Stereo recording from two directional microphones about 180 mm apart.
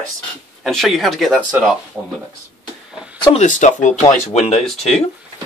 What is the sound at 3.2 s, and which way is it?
Speech, 35° left (ahead or behind).